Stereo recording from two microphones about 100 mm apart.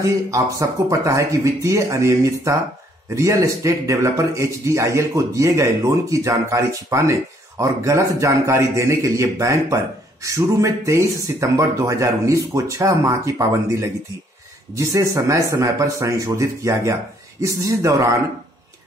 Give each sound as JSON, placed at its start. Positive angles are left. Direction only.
{"t": 0.0, "sound": "a man's voice", "side_deg": -30}